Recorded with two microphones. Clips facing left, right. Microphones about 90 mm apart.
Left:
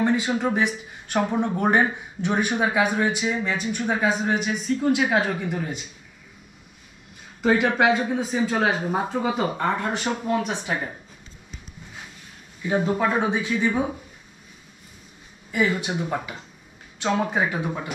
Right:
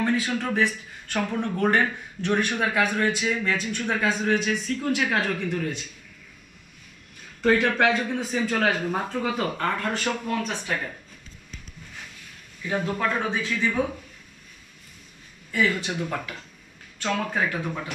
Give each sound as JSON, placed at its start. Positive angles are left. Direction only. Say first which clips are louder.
{"t": 0.0, "sound": "speech", "louder": "left 3 dB", "side_deg": 15}
{"t": 7.4, "sound": "speech", "louder": "left 1 dB", "side_deg": 15}
{"t": 12.6, "sound": "speech", "louder": "left 4 dB", "side_deg": 20}
{"t": 15.5, "sound": "speech", "louder": "left 1 dB", "side_deg": 15}